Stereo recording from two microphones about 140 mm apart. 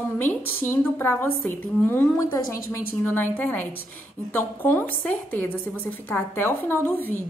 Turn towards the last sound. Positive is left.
turn(degrees=15)  # may be behind; listen again after turning